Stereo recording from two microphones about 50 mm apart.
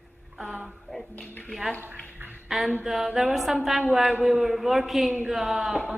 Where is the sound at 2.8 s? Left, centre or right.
Centre.